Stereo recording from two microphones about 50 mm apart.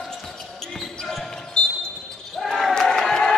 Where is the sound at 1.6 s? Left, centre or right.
Centre.